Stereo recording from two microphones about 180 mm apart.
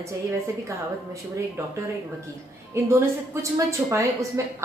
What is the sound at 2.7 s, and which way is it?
A woman's voice, 15° right (ahead or behind).